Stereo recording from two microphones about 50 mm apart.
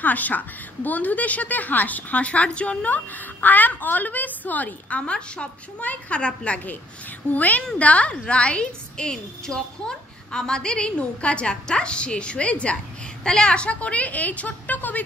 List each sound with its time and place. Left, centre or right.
0.0 s a woman's voice: left